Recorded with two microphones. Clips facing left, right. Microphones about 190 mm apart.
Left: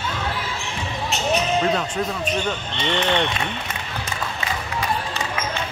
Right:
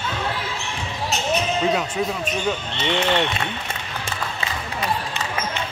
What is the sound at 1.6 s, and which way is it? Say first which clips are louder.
Speech: even; 5° right (ahead or behind).